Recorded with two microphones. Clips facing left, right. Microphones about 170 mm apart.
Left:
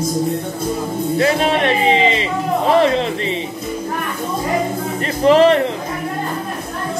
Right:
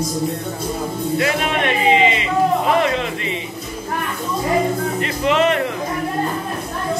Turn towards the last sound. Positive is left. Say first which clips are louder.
# left 6 dB
turn(degrees=35)  # may be behind; listen again after turning